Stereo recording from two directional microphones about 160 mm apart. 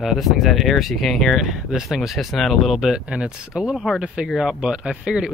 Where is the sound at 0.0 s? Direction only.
Centre (ahead or behind).